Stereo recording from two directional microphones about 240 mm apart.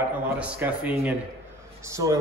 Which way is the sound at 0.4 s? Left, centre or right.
Centre.